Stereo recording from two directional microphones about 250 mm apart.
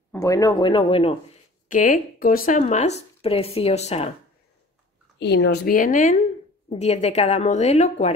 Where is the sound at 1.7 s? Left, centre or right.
Left.